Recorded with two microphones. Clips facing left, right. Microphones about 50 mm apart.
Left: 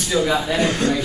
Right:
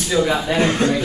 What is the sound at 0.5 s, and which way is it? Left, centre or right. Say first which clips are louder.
Speech: right 2 dB; right.